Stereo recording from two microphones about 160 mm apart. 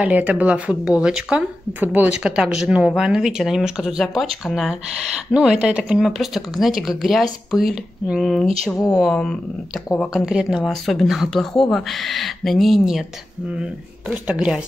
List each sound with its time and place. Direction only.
0.0 s speech: 10° right (ahead or behind)